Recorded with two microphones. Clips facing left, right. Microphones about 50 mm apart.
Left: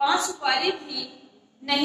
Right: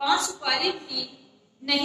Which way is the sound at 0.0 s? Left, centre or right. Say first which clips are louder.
Left 1 dB; left.